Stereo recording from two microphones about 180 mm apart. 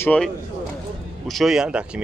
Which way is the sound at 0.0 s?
10° left (ahead or behind).